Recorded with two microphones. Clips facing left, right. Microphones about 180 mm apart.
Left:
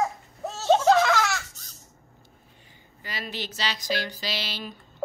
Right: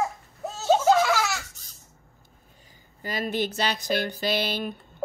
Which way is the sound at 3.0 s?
45° right (ahead or behind).